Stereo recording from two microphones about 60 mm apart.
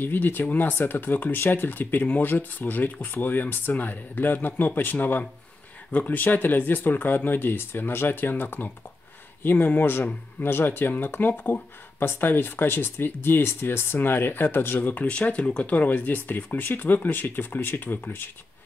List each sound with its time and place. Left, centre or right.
0.0 s speech: left